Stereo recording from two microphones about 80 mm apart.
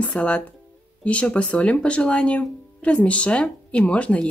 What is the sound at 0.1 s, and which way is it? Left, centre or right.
Speech, centre.